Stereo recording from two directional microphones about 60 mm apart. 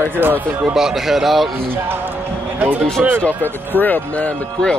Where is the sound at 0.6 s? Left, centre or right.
Centre.